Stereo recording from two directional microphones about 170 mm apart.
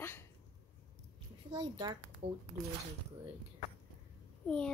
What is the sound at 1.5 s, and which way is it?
Speech, 25° right (ahead or behind).